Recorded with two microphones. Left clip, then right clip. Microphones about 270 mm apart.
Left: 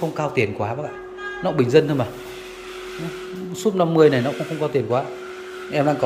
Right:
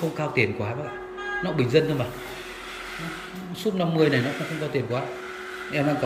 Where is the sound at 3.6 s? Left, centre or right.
Centre.